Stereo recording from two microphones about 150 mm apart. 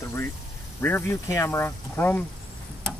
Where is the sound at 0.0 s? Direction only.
20° left (ahead or behind).